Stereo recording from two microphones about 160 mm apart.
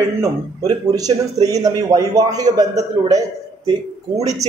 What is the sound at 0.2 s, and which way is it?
Speech, 20° right (ahead or behind).